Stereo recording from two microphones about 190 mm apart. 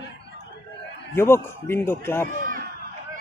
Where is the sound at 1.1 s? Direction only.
10° left (ahead or behind).